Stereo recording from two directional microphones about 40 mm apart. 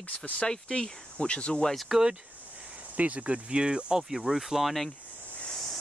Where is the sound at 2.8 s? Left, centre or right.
Right.